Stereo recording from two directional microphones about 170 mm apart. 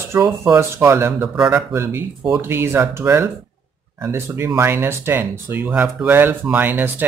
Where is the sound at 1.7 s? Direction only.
15° right (ahead or behind).